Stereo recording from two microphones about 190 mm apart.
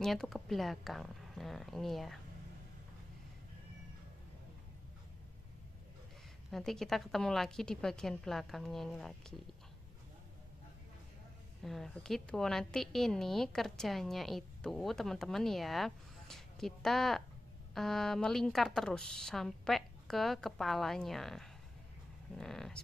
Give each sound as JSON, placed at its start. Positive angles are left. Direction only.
{"t": 0.0, "sound": "a woman's voice", "side_deg": 0}
{"t": 6.5, "sound": "a woman's voice", "side_deg": 0}
{"t": 11.6, "sound": "a woman's voice", "side_deg": 0}